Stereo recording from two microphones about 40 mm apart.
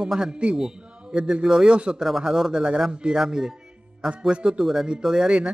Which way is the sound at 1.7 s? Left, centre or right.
Right.